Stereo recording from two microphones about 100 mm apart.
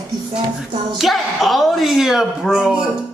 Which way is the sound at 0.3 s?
5° right (ahead or behind).